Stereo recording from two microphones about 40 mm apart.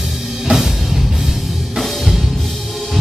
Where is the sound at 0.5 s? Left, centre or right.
Right.